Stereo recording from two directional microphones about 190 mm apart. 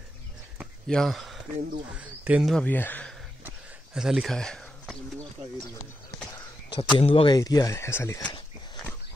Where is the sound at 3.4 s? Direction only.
5° right (ahead or behind).